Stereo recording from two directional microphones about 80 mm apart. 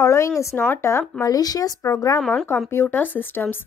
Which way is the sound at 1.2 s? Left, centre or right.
Left.